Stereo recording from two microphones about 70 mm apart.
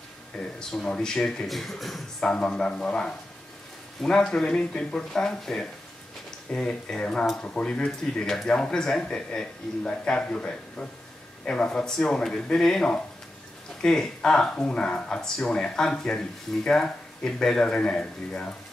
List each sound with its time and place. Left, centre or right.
0.6 s speech: centre